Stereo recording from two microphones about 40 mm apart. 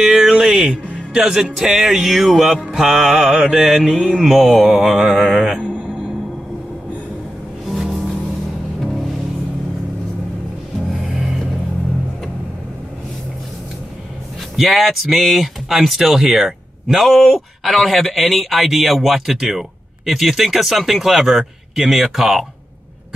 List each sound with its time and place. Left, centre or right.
0.0 s speech: centre
1.1 s music: centre
7.6 s music: centre
11.1 s music: centre
14.6 s speech: centre